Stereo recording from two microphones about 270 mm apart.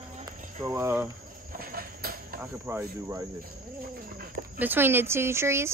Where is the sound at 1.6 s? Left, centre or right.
Right.